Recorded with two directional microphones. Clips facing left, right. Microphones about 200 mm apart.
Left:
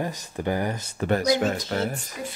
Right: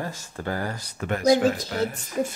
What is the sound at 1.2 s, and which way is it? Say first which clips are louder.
Speech: right 4 dB; 35° right (ahead or behind).